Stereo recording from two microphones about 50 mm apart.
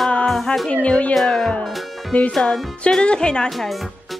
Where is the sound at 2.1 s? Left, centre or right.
Left.